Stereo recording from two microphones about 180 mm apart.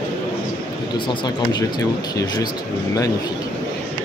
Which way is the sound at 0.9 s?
25° left (ahead or behind).